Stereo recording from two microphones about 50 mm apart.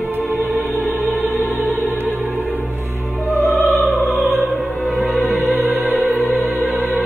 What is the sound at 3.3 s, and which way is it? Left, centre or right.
Opera, left.